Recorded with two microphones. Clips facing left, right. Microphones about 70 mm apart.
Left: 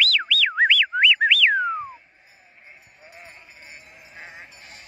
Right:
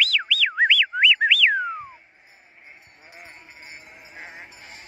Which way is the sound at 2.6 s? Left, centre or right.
Centre.